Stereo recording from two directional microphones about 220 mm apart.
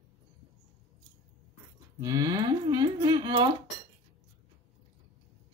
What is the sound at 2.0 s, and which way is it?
Speech, 15° right (ahead or behind).